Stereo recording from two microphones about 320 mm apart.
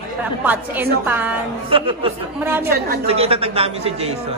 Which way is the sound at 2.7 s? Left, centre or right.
Right.